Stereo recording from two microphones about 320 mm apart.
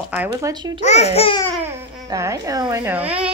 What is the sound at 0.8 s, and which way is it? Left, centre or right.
Speech, left.